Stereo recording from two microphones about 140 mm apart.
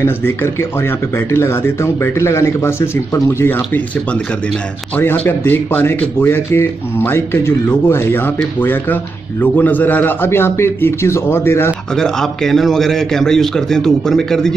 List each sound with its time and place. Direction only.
0.0 s speech: 15° left (ahead or behind)
11.9 s a man's voice: 5° left (ahead or behind)